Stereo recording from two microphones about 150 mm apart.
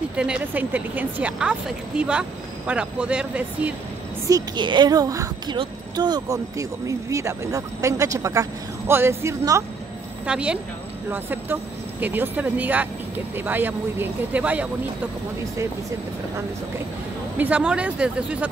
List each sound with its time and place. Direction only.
0.1 s speech: 5° right (ahead or behind)
4.3 s speech: 30° right (ahead or behind)
10.2 s speech: 5° right (ahead or behind)
17.4 s speech: 10° right (ahead or behind)